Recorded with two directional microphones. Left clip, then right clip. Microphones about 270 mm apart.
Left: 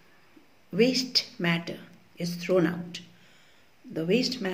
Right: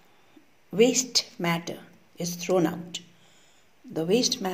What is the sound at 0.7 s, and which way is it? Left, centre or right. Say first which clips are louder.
Speech: right 2 dB; centre.